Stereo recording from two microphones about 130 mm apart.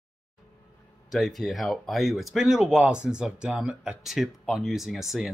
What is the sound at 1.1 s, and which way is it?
Speech, centre (ahead or behind).